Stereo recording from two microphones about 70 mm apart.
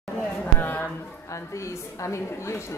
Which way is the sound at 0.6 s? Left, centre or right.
Left.